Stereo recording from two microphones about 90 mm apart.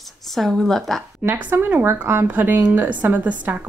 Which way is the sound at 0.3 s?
5° left (ahead or behind).